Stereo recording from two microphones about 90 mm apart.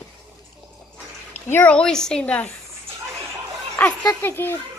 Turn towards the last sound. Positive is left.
turn(degrees=25)  # may be behind; listen again after turning